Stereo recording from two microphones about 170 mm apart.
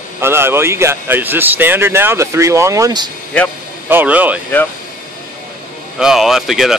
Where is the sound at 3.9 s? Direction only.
10° right (ahead or behind).